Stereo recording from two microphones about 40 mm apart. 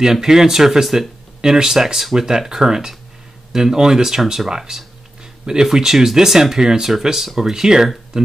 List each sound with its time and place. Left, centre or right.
0.0 s speech: centre
4.5 s a sound: centre
5.8 s speech: centre